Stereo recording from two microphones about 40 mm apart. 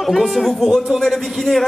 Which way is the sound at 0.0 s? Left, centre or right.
Centre.